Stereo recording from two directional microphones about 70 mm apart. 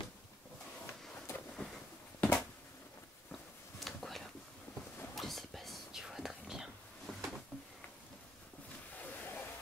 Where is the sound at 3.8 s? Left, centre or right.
Centre.